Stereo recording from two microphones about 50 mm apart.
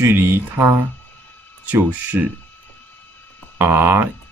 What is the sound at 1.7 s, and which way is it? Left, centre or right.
Speech, right.